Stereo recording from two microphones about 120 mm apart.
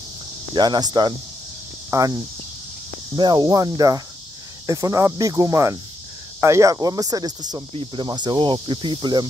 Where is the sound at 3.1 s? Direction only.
40° right (ahead or behind).